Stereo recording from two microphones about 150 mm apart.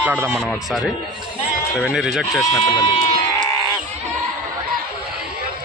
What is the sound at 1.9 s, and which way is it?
Speech, 5° right (ahead or behind).